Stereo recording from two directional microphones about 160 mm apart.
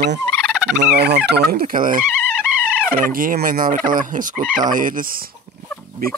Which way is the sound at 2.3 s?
10° right (ahead or behind).